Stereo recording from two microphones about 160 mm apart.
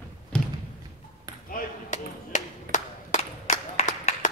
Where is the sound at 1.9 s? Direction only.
50° left (ahead or behind).